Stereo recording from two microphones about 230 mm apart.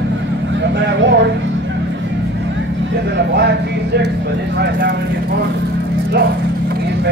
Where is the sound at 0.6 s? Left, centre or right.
Right.